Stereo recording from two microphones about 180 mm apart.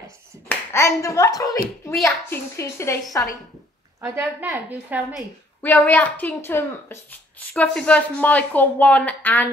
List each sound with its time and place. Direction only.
0.5 s speech: 15° left (ahead or behind)
4.0 s a woman's voice: 10° right (ahead or behind)
5.6 s speech: 10° left (ahead or behind)